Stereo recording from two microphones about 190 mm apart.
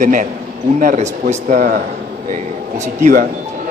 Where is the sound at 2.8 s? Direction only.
40° right (ahead or behind).